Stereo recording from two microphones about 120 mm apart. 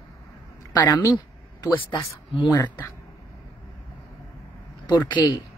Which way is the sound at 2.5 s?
35° left (ahead or behind).